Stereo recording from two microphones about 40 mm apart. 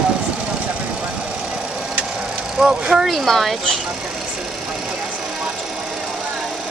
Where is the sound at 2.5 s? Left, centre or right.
Centre.